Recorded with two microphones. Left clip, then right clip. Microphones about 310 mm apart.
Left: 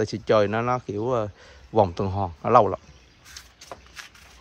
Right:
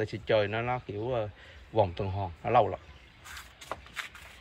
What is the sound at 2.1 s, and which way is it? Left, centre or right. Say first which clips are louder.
Speech: left 7 dB; left.